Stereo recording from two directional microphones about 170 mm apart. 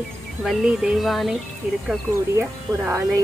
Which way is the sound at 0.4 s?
Centre (ahead or behind).